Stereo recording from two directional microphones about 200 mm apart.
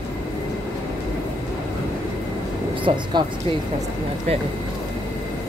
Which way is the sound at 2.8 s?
20° right (ahead or behind).